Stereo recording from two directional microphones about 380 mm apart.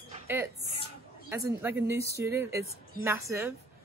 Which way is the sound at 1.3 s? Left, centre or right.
Centre.